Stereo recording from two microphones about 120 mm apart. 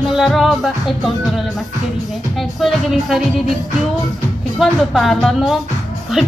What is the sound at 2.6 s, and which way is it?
Speech, centre (ahead or behind).